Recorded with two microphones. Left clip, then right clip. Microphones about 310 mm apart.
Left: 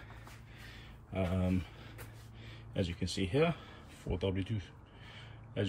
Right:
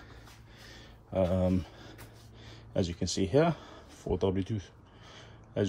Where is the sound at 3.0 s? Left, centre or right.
Centre.